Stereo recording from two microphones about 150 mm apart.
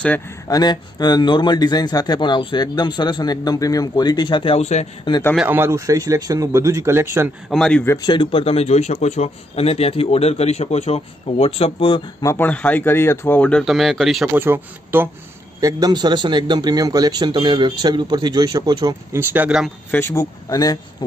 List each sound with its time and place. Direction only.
0.5 s a man's voice: 25° left (ahead or behind); by 4.8 s 45° left (ahead or behind)
5.5 s a man's voice: 15° right (ahead or behind)
7.4 s a man's voice: centre (ahead or behind)
7.8 s speech: 20° left (ahead or behind)
8.1 s a man's voice: 35° left (ahead or behind)
12.2 s speech: 15° left (ahead or behind); by 14.3 s centre (ahead or behind)
14.3 s speech: 15° right (ahead or behind)
15.6 s a man's voice: 25° right (ahead or behind)
19.1 s speech: 10° right (ahead or behind)
19.9 s a man's voice: 15° left (ahead or behind)